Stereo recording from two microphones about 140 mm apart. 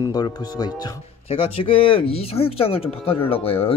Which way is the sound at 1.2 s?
40° left (ahead or behind).